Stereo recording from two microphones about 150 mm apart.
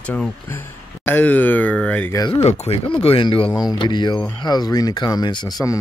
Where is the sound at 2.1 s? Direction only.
30° left (ahead or behind).